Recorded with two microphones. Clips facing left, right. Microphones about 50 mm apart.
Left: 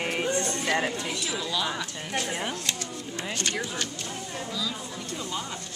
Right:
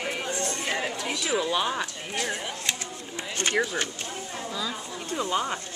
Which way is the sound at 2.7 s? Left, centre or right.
Right.